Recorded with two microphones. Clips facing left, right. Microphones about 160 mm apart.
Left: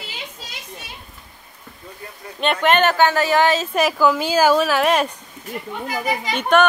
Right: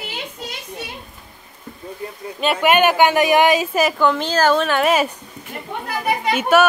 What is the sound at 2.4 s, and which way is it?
A woman's voice, 5° right (ahead or behind).